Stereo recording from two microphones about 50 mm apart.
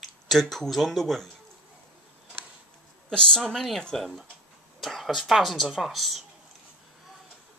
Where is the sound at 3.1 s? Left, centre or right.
Centre.